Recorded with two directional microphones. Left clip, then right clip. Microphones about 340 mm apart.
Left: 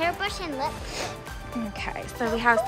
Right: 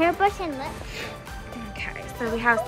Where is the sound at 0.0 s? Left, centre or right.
Centre.